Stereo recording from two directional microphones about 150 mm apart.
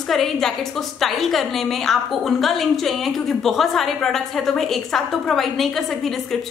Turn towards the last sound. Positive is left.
turn(degrees=0)  # may be behind; listen again after turning